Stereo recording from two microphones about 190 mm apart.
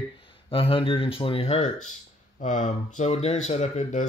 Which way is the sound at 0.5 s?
30° left (ahead or behind).